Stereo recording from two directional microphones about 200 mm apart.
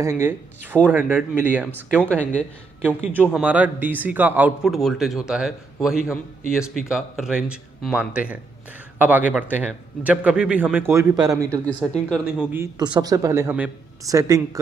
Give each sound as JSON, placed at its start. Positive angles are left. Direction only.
{"t": 0.0, "sound": "speech", "side_deg": -10}
{"t": 3.3, "sound": "a man's voice", "side_deg": -10}
{"t": 11.6, "sound": "a man's voice", "side_deg": 5}
{"t": 12.7, "sound": "speech", "side_deg": -20}